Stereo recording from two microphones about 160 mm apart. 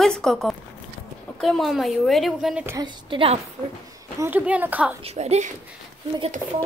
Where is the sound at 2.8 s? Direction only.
35° right (ahead or behind).